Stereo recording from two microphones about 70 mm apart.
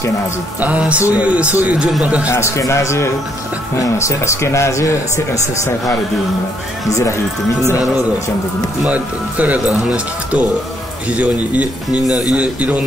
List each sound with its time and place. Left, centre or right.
0.6 s speech: right
2.2 s speech: left
8.8 s speech: right